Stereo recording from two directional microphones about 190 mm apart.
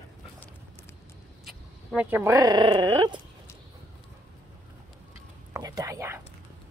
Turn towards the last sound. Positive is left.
turn(degrees=-15)  # may be behind; listen again after turning